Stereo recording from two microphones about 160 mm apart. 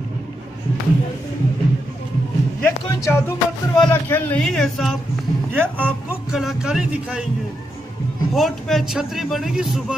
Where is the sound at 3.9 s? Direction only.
15° left (ahead or behind).